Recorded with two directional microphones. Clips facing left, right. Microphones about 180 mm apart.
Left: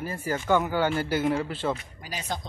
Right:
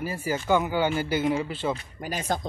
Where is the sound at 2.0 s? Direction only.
50° right (ahead or behind).